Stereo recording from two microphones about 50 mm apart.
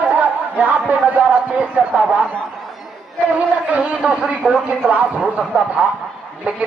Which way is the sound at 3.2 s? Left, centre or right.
Right.